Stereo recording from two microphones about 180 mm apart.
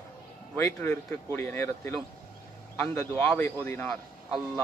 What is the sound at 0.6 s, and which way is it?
A man's voice, 15° left (ahead or behind).